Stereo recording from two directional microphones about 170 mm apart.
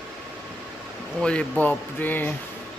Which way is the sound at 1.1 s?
5° left (ahead or behind).